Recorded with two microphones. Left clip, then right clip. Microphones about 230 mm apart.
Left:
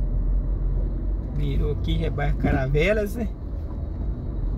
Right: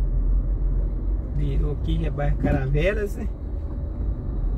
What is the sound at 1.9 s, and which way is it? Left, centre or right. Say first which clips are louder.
Speech: left 1 dB; left.